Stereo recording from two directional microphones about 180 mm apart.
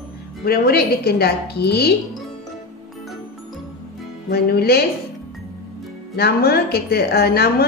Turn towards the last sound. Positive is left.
turn(degrees=60)  # may be behind; listen again after turning